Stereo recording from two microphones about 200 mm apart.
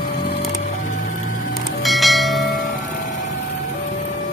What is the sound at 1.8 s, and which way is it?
Church bell, centre (ahead or behind).